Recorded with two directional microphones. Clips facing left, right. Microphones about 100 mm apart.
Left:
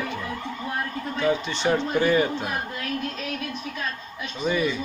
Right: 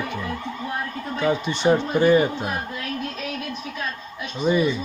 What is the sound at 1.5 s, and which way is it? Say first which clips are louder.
Speech: right 4 dB; 15° right (ahead or behind).